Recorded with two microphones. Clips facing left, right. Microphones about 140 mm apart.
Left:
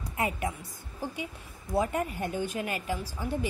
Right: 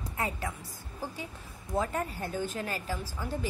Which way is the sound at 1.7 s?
15° left (ahead or behind).